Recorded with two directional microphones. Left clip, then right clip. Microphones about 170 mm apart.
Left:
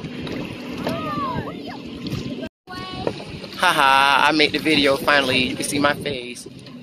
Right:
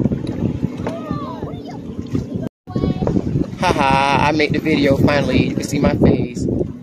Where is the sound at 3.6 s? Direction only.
15° right (ahead or behind).